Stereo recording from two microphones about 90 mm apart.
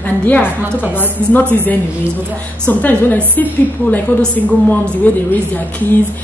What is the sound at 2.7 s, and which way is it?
A woman's voice, 20° left (ahead or behind).